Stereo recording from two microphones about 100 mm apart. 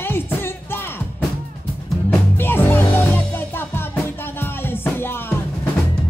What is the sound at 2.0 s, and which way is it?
Music, 20° left (ahead or behind).